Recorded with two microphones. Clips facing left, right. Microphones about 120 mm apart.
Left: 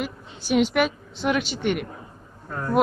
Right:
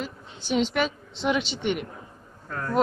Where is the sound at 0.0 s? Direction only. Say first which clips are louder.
Left 4 dB; 10° left (ahead or behind).